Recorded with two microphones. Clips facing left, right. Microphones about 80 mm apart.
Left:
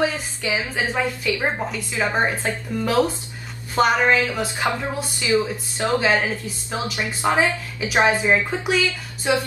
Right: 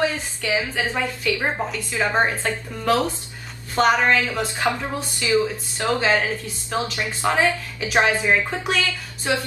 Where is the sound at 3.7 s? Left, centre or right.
Centre.